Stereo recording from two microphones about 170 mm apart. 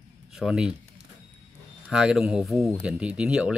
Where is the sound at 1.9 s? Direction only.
5° right (ahead or behind).